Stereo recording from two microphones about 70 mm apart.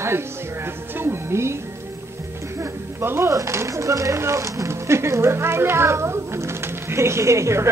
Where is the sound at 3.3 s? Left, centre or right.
Right.